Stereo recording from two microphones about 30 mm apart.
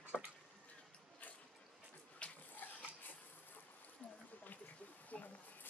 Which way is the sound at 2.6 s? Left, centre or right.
Left.